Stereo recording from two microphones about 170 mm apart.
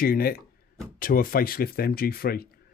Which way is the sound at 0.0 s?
60° left (ahead or behind).